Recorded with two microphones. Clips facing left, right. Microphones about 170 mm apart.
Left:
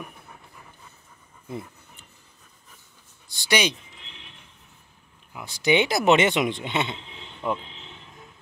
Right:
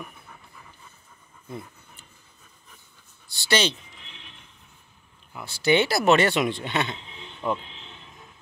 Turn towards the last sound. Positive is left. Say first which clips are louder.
# even
turn(degrees=10)  # may be behind; listen again after turning